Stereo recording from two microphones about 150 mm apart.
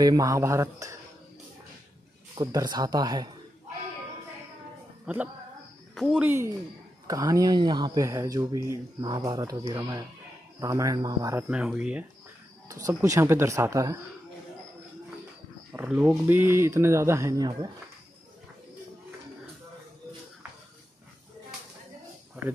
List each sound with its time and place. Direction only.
0.0 s speech: 25° right (ahead or behind)
2.3 s speech: 30° right (ahead or behind)
5.0 s speech: 10° right (ahead or behind)
11.4 s speech: 10° right (ahead or behind)
12.8 s speech: 20° right (ahead or behind)
15.7 s speech: 10° right (ahead or behind); by 17.6 s 25° right (ahead or behind)